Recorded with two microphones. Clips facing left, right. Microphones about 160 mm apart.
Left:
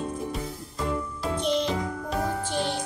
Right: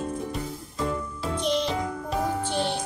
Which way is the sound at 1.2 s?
5° left (ahead or behind).